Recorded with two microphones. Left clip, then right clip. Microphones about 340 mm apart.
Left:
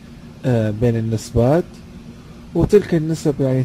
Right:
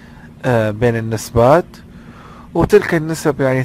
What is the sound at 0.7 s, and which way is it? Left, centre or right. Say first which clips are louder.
Speech: right 4 dB; right.